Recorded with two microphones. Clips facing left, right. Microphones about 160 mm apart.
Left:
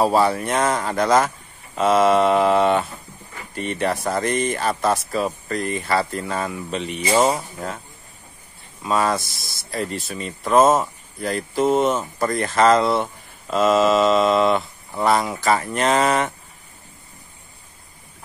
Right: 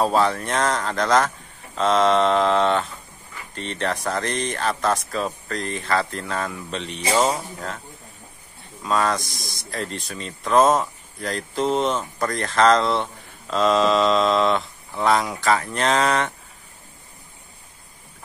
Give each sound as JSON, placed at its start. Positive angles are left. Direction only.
{"t": 0.0, "sound": "speech", "side_deg": 10}
{"t": 8.8, "sound": "speech", "side_deg": 5}